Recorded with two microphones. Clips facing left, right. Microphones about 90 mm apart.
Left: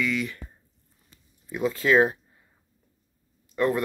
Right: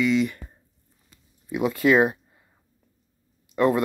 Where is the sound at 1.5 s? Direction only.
10° right (ahead or behind).